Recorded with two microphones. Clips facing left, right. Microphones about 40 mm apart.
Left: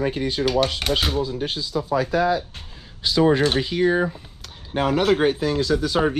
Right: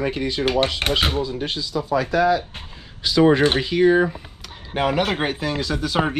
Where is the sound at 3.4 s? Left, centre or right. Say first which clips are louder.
Right 3 dB; right.